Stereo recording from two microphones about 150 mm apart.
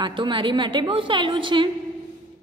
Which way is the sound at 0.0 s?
30° right (ahead or behind).